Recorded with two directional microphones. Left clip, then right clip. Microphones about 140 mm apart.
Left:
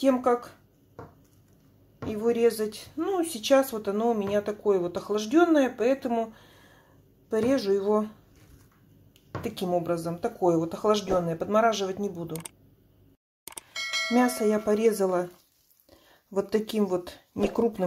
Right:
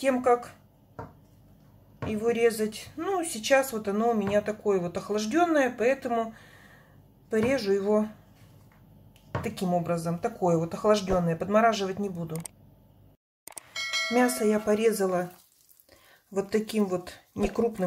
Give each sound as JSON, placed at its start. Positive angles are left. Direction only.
{"t": 0.0, "sound": "speech", "side_deg": 25}
{"t": 2.2, "sound": "speech", "side_deg": 25}
{"t": 7.2, "sound": "speech", "side_deg": 25}
{"t": 9.4, "sound": "speech", "side_deg": 25}
{"t": 13.5, "sound": "bell", "side_deg": 0}
{"t": 14.7, "sound": "speech", "side_deg": 20}
{"t": 16.3, "sound": "speech", "side_deg": 20}